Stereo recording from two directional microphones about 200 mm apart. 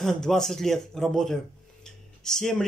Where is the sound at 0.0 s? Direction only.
Centre (ahead or behind).